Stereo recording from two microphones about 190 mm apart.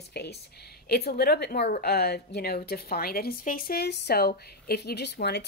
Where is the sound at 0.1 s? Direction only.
60° left (ahead or behind).